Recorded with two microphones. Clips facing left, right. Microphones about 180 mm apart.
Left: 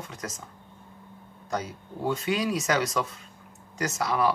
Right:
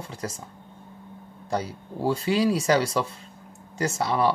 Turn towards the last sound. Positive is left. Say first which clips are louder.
# right 2 dB
turn(degrees=-30)  # may be behind; listen again after turning